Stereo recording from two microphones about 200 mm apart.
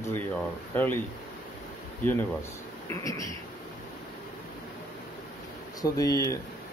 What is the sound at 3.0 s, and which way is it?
Speech, 15° left (ahead or behind).